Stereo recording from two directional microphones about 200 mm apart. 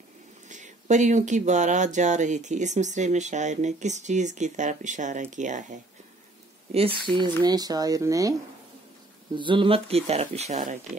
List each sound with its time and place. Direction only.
0.5 s speech: 40° right (ahead or behind)
7.1 s speech: 20° right (ahead or behind)